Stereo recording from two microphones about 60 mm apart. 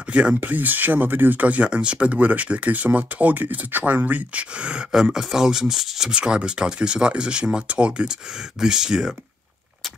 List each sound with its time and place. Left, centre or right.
0.1 s speech: centre
0.4 s speech: right; by 9.1 s centre